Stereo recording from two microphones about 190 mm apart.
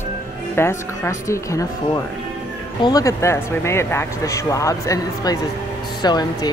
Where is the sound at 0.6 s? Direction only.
15° left (ahead or behind).